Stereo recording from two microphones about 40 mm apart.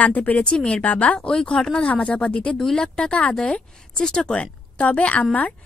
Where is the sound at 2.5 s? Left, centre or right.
Centre.